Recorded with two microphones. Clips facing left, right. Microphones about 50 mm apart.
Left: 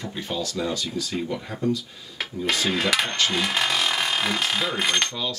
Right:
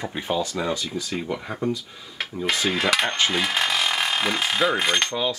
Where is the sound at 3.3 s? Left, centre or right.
Centre.